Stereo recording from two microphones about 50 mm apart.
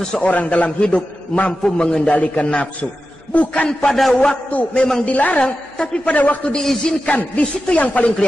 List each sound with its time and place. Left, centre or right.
0.0 s a man's voice: centre
0.3 s a man's voice: left
3.9 s a man's voice: centre
4.5 s a man's voice: left
6.5 s a man's voice: centre
7.6 s a man's voice: left